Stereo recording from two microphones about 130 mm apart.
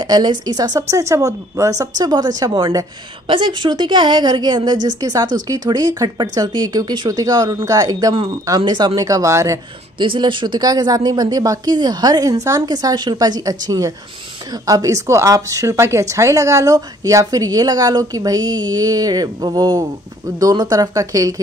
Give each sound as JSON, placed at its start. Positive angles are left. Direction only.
{"t": 0.0, "sound": "a woman's voice", "side_deg": -35}
{"t": 9.9, "sound": "a woman's voice", "side_deg": -40}